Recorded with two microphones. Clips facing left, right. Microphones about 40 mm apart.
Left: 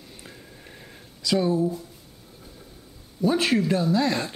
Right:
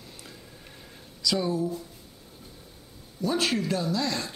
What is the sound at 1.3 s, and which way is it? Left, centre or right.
Speech, centre.